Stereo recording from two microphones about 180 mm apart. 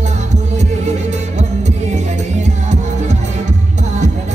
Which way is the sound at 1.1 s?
40° right (ahead or behind).